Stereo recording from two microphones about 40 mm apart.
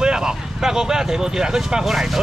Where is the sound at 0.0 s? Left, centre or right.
Centre.